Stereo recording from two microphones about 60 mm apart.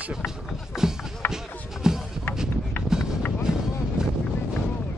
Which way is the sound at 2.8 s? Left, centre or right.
Left.